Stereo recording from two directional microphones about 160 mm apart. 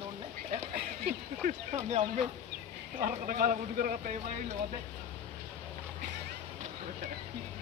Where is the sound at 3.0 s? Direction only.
60° right (ahead or behind).